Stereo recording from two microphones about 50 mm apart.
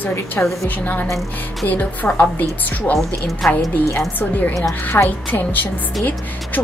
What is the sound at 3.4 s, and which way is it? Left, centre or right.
Speech, centre.